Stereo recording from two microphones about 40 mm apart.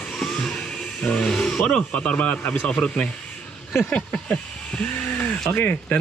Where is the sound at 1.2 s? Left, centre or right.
Left.